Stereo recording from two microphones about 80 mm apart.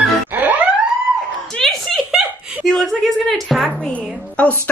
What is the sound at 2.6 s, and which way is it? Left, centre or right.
Speech, centre.